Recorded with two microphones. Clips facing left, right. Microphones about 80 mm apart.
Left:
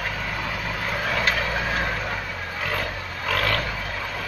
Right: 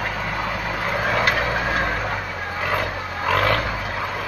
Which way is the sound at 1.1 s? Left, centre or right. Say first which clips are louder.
Right 3 dB; centre.